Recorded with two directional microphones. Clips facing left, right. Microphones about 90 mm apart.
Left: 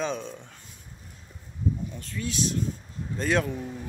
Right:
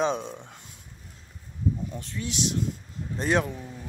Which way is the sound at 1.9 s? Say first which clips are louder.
Left 1 dB; 25° right (ahead or behind).